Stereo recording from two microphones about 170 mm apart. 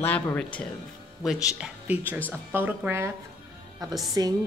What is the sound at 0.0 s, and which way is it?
Speech, 10° left (ahead or behind).